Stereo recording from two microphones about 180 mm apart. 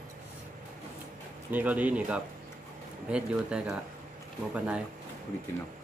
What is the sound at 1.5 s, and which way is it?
Speech, 10° right (ahead or behind).